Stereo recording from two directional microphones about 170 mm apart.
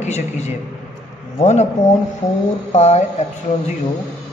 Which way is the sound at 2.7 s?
40° left (ahead or behind).